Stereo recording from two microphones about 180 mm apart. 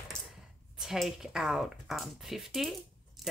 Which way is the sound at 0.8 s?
Centre (ahead or behind).